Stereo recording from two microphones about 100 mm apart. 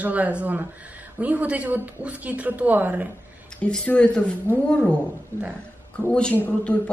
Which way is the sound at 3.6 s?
10° left (ahead or behind).